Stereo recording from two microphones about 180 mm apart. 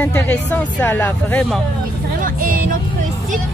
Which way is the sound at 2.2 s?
50° right (ahead or behind).